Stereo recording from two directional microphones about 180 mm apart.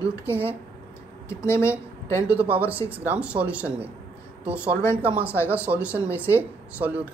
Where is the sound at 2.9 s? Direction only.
10° right (ahead or behind).